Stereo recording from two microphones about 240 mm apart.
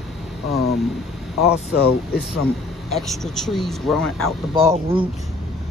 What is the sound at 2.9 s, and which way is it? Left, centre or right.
Speech, centre.